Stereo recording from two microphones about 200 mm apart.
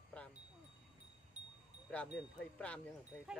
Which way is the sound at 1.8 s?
5° left (ahead or behind).